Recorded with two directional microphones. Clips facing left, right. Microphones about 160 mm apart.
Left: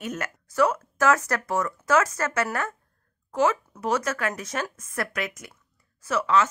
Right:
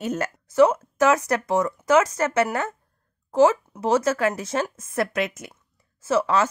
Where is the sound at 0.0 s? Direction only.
30° right (ahead or behind).